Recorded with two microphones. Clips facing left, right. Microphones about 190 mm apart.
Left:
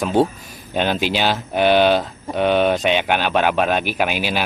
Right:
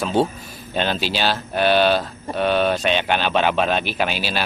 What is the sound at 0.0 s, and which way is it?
Speech, 15° left (ahead or behind).